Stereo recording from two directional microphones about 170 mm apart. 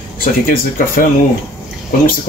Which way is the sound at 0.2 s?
55° left (ahead or behind).